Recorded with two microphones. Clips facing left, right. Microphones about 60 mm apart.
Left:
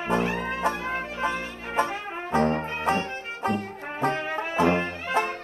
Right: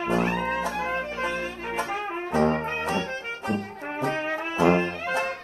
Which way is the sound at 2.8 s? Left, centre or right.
Left.